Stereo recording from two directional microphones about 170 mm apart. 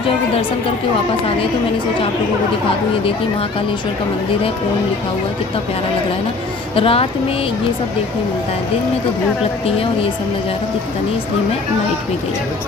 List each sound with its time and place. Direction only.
6.7 s a woman's voice: 35° left (ahead or behind)